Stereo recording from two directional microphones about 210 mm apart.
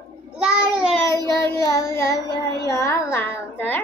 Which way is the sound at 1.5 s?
15° left (ahead or behind).